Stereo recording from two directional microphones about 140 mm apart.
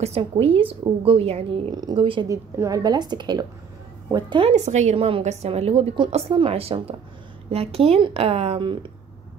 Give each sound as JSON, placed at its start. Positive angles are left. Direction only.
{"t": 0.0, "sound": "a woman's voice", "side_deg": -45}
{"t": 1.7, "sound": "a woman's voice", "side_deg": -30}
{"t": 2.2, "sound": "a woman's voice", "side_deg": -20}
{"t": 4.5, "sound": "a woman's voice", "side_deg": -55}